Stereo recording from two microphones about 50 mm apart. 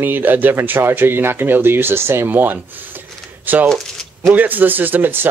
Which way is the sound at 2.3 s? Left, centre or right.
Right.